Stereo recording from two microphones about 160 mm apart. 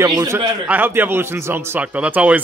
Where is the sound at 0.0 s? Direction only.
20° right (ahead or behind).